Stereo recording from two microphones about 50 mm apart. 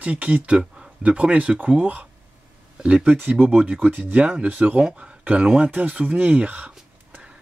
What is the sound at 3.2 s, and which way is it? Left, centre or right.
Speech, right.